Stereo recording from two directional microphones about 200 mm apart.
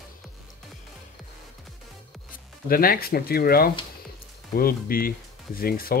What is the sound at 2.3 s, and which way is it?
Speech, 45° left (ahead or behind).